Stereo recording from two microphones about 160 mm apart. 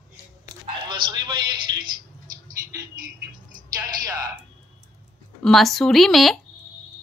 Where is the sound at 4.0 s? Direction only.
20° right (ahead or behind).